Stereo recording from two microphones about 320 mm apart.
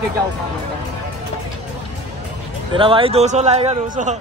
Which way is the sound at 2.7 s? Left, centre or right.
Centre.